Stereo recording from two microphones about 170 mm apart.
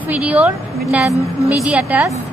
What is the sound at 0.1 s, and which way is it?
Speech, 10° right (ahead or behind).